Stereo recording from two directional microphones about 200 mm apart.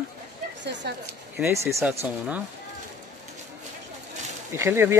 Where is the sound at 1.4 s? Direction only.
15° right (ahead or behind).